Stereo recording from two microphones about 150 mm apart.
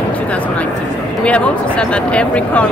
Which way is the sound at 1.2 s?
10° left (ahead or behind).